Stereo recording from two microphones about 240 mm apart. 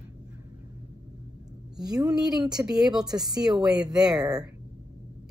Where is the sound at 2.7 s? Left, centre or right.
Centre.